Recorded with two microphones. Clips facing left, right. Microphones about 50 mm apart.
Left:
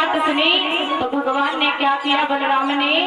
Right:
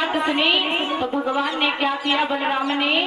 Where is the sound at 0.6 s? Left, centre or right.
Centre.